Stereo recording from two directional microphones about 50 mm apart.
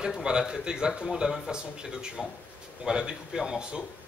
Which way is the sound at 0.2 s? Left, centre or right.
Centre.